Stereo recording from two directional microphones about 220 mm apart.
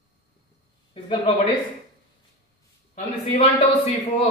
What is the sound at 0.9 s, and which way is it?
Speech, 25° left (ahead or behind).